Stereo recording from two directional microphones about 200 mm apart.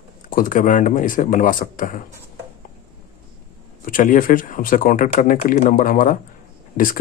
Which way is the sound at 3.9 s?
45° left (ahead or behind).